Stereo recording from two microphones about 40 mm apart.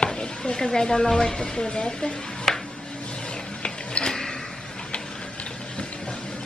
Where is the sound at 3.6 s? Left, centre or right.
Left.